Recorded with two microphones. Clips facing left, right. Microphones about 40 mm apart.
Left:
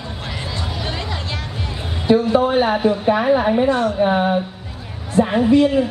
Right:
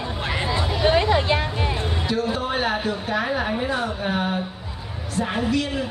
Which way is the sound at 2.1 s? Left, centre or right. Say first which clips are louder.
Left 11 dB; left.